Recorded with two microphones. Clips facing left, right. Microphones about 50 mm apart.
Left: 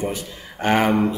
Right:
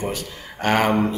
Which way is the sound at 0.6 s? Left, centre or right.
Centre.